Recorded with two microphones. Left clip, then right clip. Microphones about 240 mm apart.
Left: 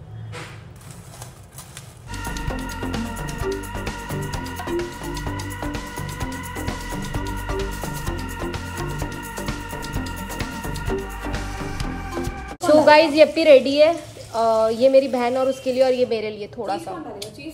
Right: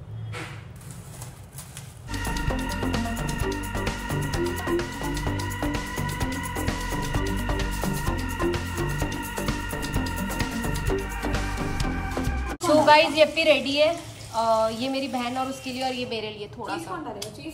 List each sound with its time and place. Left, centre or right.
2.2 s music: centre
13.9 s speech: centre
15.0 s a woman's voice: left